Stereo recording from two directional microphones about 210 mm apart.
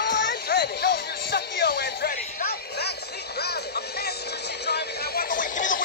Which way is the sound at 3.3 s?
50° left (ahead or behind).